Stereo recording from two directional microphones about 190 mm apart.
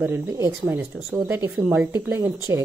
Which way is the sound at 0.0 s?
15° right (ahead or behind).